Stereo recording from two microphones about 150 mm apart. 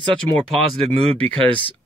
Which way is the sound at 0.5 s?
40° right (ahead or behind).